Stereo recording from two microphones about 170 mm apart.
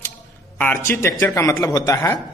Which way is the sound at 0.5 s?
10° left (ahead or behind).